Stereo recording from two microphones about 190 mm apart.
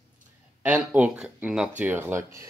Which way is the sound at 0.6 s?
5° right (ahead or behind).